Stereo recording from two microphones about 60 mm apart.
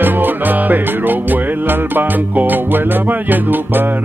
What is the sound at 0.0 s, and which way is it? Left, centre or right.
Music, right.